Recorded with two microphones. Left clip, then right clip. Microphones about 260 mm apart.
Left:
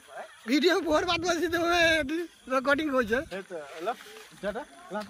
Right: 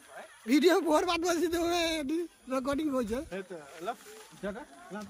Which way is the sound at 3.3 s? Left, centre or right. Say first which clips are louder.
Left 4 dB; centre.